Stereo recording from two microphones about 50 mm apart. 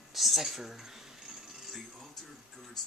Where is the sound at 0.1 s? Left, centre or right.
Centre.